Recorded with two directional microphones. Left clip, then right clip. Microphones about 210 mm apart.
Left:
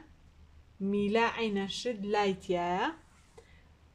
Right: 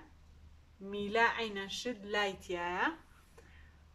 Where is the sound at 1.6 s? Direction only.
25° left (ahead or behind).